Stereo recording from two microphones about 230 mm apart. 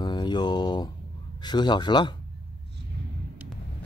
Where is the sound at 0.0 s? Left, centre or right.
Centre.